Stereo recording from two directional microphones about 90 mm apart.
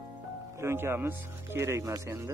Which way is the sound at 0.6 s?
30° right (ahead or behind).